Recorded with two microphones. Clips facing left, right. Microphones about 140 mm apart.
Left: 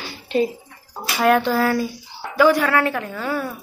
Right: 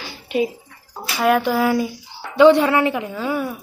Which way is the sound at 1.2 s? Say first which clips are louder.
Even; 10° right (ahead or behind).